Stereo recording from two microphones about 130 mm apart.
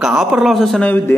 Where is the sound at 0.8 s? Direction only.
15° left (ahead or behind).